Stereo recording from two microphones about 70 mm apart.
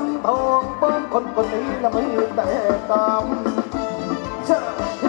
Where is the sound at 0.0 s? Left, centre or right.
Centre.